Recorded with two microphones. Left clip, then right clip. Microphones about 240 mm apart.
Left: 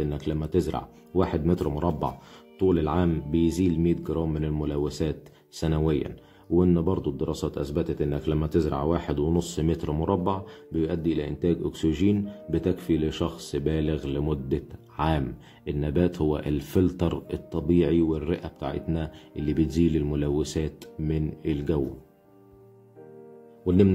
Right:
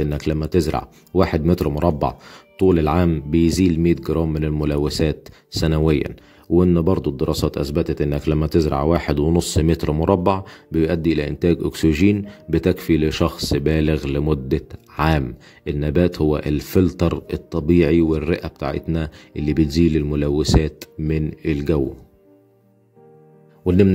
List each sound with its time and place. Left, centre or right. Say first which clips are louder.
0.0 s speech: right 7 dB; right
23.6 s speech: right 5 dB; right